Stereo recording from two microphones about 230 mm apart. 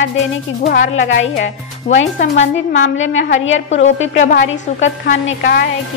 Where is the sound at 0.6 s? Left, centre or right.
Left.